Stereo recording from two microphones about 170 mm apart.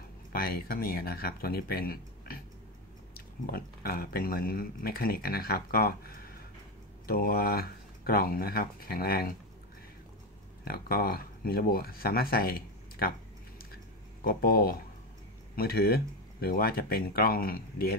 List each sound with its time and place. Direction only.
0.3 s speech: 60° left (ahead or behind)
10.6 s speech: 60° left (ahead or behind)
14.2 s speech: 60° left (ahead or behind)